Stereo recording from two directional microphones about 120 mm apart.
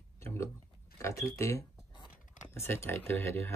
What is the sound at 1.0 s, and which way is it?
Speech, 25° left (ahead or behind).